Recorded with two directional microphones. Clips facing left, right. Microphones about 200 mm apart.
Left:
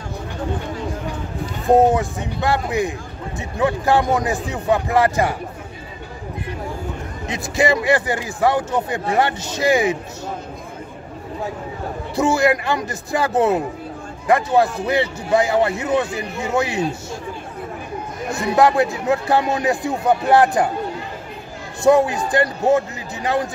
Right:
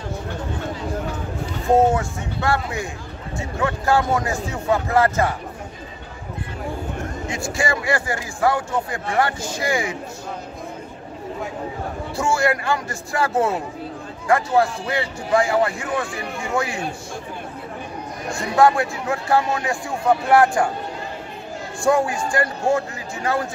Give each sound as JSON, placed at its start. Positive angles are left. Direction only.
{"t": 1.8, "sound": "a man's voice", "side_deg": 15}
{"t": 7.2, "sound": "speech", "side_deg": 20}
{"t": 12.2, "sound": "speech", "side_deg": 20}
{"t": 18.3, "sound": "speech", "side_deg": 20}
{"t": 21.8, "sound": "speech", "side_deg": 20}